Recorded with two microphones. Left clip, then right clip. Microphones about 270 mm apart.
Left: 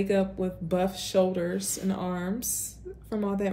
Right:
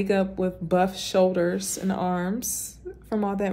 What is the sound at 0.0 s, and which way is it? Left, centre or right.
Speech, right.